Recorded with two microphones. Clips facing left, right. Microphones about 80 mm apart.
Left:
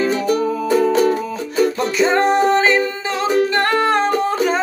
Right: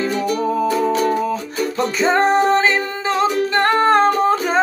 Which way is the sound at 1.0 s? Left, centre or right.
Right.